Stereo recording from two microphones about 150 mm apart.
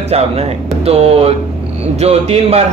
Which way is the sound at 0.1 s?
45° right (ahead or behind).